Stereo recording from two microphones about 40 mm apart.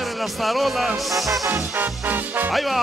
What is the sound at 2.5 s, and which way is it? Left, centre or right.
Music, centre.